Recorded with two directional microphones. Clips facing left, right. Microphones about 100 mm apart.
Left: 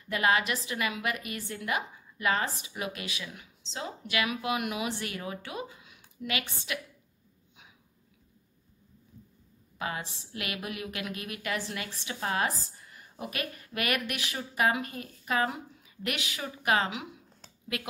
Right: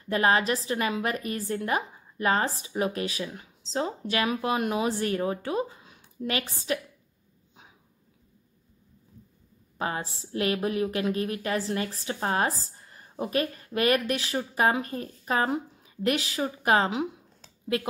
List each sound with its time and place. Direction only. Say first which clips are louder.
0.1 s a woman's voice: right 4 dB; 35° right (ahead or behind)
9.8 s a woman's voice: right 4 dB; 35° right (ahead or behind)